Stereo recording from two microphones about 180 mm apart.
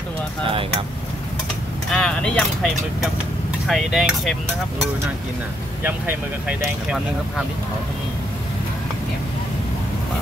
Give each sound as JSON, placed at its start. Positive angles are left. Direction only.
{"t": 0.5, "sound": "speech", "side_deg": -30}
{"t": 1.9, "sound": "speech", "side_deg": 5}
{"t": 5.9, "sound": "speech", "side_deg": -10}